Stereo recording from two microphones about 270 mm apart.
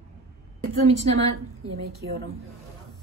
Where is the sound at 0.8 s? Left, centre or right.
Right.